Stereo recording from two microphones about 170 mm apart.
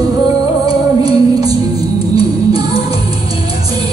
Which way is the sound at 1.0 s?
20° right (ahead or behind).